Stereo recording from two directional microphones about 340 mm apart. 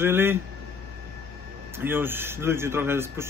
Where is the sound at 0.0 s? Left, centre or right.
Centre.